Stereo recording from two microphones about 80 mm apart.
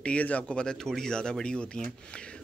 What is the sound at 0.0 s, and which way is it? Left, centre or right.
Speech, centre.